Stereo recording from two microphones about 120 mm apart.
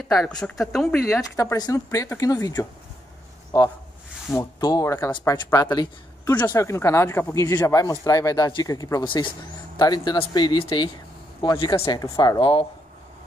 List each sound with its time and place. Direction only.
0.1 s speech: 5° left (ahead or behind)
1.3 s a man's voice: 30° left (ahead or behind)
6.3 s speech: 25° left (ahead or behind)
9.0 s speech: 45° left (ahead or behind)
12.0 s speech: 30° left (ahead or behind)
12.4 s speech: 45° left (ahead or behind)